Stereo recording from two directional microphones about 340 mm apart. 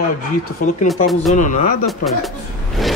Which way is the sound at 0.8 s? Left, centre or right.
Centre.